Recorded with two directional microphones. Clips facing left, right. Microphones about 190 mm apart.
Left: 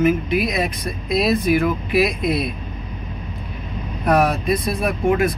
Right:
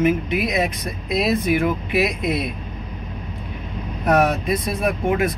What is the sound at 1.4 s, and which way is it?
Speech, 20° right (ahead or behind).